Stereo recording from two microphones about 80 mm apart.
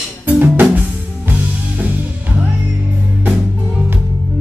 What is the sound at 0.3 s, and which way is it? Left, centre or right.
Music, right.